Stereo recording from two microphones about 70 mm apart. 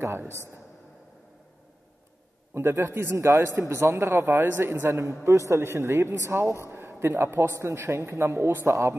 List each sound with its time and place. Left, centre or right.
0.0 s speech: right
2.5 s speech: right
4.3 s speech: right